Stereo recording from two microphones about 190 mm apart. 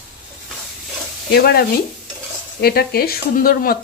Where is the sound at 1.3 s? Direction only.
55° left (ahead or behind).